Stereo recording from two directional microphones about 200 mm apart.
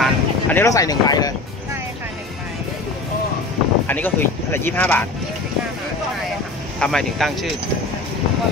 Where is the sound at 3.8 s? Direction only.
10° left (ahead or behind).